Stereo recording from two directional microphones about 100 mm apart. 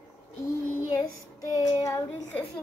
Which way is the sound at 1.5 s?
35° left (ahead or behind).